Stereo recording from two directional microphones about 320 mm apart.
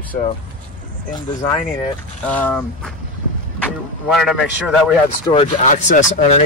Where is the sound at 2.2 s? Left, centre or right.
Centre.